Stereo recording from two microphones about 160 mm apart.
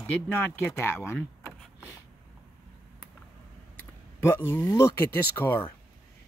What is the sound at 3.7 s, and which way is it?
Speech, 15° left (ahead or behind).